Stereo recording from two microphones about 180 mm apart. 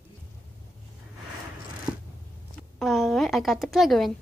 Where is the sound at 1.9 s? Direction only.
25° right (ahead or behind).